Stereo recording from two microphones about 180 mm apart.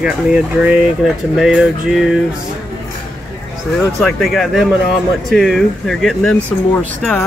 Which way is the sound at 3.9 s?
Centre (ahead or behind).